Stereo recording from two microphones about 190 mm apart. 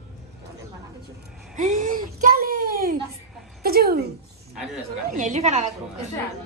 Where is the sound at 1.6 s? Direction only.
40° right (ahead or behind).